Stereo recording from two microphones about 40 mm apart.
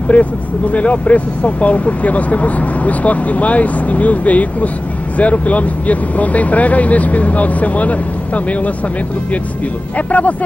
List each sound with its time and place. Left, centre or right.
0.1 s speech: left
9.9 s speech: left